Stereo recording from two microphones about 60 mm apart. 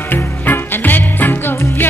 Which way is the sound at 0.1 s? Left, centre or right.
Left.